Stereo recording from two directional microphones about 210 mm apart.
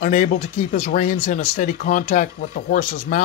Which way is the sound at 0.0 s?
35° left (ahead or behind).